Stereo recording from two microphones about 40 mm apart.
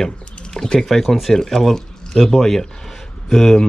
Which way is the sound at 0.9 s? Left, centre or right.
Centre.